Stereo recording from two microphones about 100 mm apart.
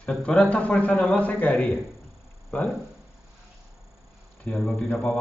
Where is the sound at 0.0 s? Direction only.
10° left (ahead or behind).